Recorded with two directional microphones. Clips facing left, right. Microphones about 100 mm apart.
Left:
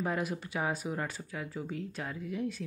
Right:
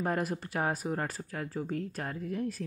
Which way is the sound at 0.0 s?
45° right (ahead or behind).